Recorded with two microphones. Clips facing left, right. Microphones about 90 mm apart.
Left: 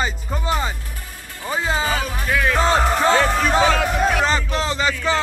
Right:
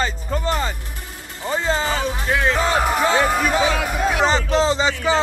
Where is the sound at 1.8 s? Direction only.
25° right (ahead or behind).